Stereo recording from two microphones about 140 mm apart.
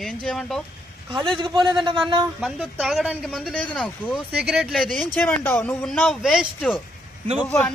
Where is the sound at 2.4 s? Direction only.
Centre (ahead or behind).